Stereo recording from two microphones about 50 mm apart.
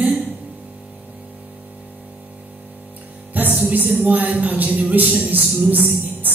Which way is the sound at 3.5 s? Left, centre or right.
Right.